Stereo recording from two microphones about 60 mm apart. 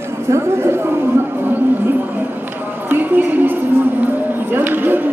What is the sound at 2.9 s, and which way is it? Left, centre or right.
Speech, right.